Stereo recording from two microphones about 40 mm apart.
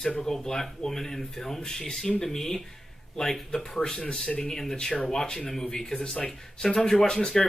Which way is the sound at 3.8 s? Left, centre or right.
Centre.